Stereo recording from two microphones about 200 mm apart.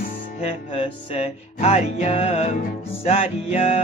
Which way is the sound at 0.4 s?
30° left (ahead or behind).